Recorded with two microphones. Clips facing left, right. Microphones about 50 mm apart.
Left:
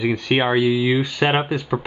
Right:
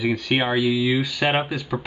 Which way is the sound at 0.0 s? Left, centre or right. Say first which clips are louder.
Left 3 dB; centre.